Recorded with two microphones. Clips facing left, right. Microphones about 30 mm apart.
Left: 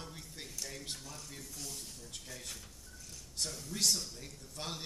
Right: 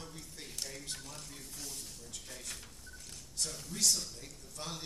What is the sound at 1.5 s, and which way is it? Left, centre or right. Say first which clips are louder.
Speech: even; centre.